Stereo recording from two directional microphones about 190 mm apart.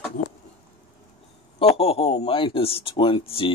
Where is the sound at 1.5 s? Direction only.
30° left (ahead or behind).